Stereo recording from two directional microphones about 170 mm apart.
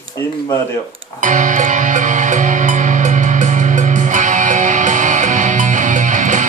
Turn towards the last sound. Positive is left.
turn(degrees=-45)  # may be behind; listen again after turning